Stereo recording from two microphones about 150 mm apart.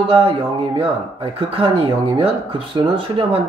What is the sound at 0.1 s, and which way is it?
Speech, 40° right (ahead or behind).